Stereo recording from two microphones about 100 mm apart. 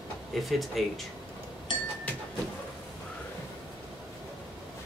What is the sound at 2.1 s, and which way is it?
Vehicle, 15° left (ahead or behind).